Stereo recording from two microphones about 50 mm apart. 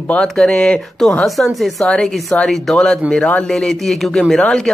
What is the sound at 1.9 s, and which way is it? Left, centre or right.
Speech, centre.